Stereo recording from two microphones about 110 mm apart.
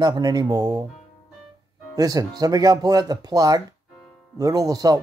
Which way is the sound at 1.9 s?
35° right (ahead or behind).